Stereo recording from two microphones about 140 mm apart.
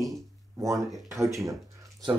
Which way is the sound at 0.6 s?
20° right (ahead or behind).